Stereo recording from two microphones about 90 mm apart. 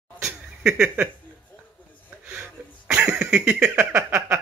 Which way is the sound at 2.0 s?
15° right (ahead or behind).